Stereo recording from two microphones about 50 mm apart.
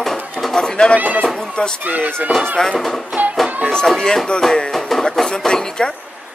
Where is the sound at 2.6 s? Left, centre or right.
Centre.